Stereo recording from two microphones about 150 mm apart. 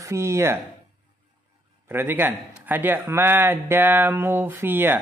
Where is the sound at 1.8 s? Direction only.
15° right (ahead or behind).